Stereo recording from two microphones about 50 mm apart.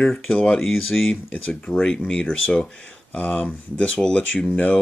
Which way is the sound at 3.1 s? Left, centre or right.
Left.